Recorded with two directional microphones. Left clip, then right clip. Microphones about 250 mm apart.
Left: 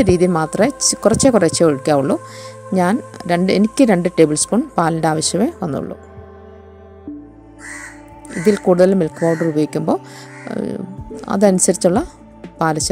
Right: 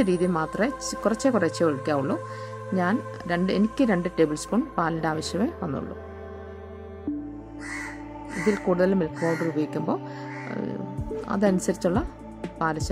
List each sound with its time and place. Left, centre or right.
0.0 s speech: left
8.5 s speech: left